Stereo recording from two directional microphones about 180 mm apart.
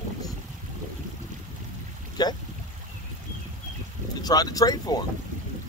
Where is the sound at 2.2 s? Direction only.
20° left (ahead or behind).